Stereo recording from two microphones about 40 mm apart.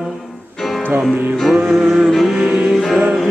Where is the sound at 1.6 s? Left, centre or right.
Centre.